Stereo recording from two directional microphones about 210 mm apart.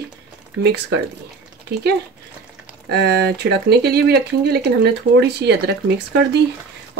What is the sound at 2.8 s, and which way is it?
Speech, 50° right (ahead or behind).